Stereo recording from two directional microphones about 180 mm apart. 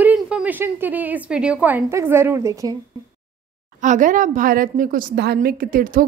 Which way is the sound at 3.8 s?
45° right (ahead or behind).